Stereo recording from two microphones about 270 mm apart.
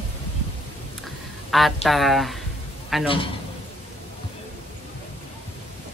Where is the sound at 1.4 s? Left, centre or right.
Centre.